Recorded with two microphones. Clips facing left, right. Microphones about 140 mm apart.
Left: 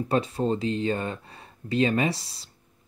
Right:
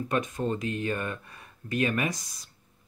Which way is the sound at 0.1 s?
30° left (ahead or behind).